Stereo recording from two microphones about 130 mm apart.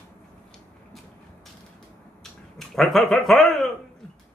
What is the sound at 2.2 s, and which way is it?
Speech, centre (ahead or behind).